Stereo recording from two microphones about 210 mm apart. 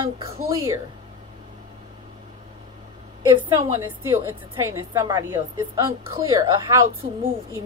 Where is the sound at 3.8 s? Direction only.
10° right (ahead or behind).